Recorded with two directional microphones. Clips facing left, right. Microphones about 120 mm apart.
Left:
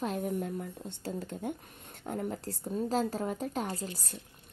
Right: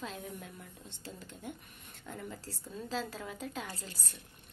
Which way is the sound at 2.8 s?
45° left (ahead or behind).